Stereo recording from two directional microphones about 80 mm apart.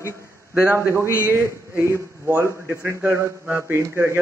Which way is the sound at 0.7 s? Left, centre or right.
Right.